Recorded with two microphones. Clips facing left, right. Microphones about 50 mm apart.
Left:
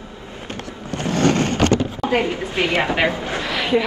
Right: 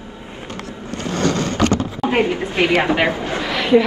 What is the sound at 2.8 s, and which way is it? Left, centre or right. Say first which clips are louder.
Speech: right 2 dB; right.